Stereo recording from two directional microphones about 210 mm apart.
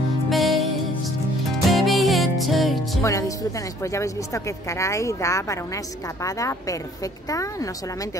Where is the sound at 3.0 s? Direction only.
15° left (ahead or behind).